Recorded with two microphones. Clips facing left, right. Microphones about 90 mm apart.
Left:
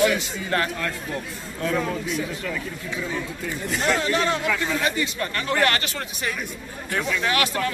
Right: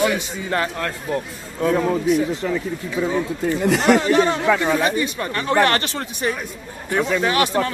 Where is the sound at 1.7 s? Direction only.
35° right (ahead or behind).